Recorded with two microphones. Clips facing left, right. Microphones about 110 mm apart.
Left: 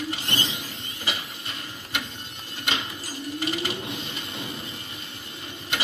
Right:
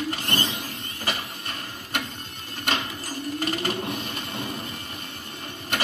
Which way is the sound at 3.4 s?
45° right (ahead or behind).